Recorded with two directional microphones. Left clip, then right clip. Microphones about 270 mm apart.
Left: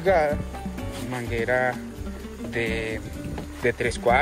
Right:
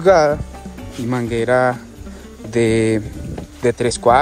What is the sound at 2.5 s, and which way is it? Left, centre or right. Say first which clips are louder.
Speech: right 11 dB; right.